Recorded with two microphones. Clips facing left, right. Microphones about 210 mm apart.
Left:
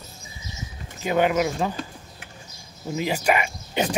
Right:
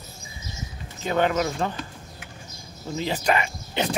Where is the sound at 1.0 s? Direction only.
10° left (ahead or behind).